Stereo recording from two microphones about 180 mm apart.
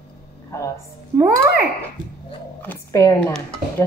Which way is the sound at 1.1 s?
20° right (ahead or behind).